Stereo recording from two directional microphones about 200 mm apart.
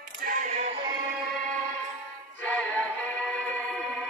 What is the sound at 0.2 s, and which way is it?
Music, 40° right (ahead or behind).